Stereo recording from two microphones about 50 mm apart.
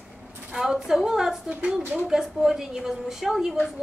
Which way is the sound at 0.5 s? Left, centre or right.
Centre.